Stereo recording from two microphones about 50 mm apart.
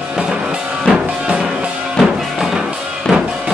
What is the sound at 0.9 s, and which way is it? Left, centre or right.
Music, centre.